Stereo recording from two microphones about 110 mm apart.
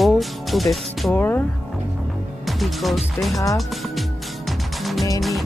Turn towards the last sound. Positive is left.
turn(degrees=0)  # may be behind; listen again after turning